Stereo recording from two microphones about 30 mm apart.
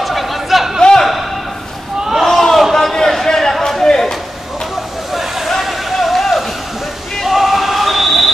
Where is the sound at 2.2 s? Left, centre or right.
Centre.